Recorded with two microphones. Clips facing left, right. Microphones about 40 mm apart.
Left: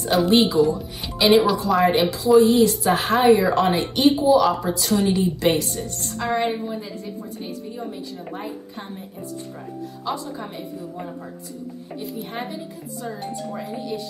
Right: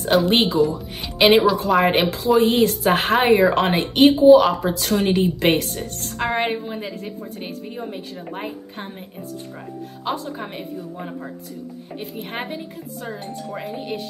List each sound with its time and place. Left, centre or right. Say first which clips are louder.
0.3 s speech: left 1 dB; right
1.1 s music: right 2 dB; right
1.7 s speech: right 1 dB; right
10.1 s speech: right 2 dB; right